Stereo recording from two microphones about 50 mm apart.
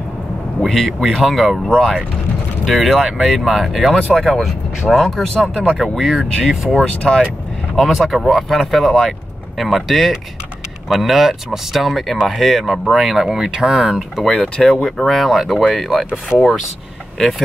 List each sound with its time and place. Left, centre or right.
0.6 s speech: centre
6.1 s speech: centre
7.0 s speech: centre
7.8 s speech: centre
14.2 s speech: centre